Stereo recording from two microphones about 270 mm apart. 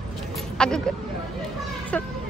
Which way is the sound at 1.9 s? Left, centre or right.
Centre.